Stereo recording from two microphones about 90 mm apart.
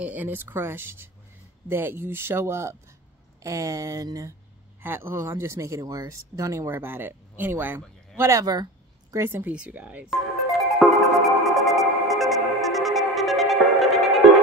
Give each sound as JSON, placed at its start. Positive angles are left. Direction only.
{"t": 0.0, "sound": "speech", "side_deg": -20}
{"t": 4.8, "sound": "speech", "side_deg": -30}
{"t": 6.8, "sound": "speech", "side_deg": -25}
{"t": 8.2, "sound": "speech", "side_deg": -40}
{"t": 9.1, "sound": "speech", "side_deg": -25}
{"t": 10.7, "sound": "music", "side_deg": 0}